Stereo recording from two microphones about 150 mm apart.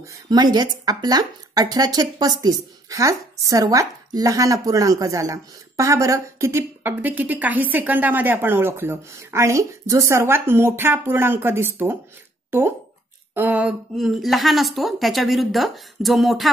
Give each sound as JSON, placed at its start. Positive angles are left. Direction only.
{"t": 0.0, "sound": "speech", "side_deg": -25}
{"t": 12.4, "sound": "a sound", "side_deg": -15}
{"t": 13.3, "sound": "a woman's voice", "side_deg": -10}